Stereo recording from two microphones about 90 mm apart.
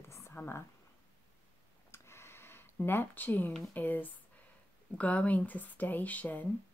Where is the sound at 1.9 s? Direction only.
30° left (ahead or behind).